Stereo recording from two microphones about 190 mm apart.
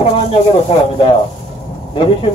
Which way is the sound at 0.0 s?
30° left (ahead or behind).